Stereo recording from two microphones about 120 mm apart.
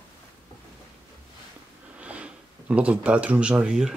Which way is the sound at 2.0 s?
10° right (ahead or behind).